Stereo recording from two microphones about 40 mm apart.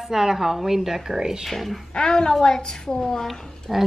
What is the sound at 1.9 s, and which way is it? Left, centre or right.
A woman's voice, centre.